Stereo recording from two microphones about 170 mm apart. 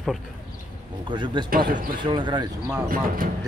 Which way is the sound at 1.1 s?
25° right (ahead or behind).